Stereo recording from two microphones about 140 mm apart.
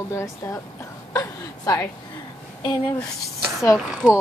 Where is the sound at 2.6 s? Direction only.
35° left (ahead or behind).